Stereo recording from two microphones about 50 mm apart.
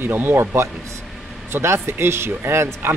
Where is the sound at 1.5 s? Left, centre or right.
Right.